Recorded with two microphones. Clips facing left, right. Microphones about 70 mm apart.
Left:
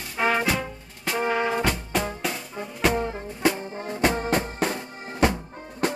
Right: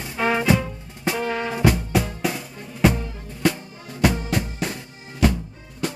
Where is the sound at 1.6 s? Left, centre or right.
Centre.